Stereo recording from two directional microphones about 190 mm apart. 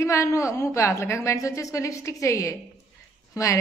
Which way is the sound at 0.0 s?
15° left (ahead or behind).